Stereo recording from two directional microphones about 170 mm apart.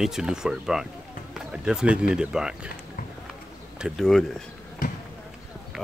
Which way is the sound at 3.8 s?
Centre (ahead or behind).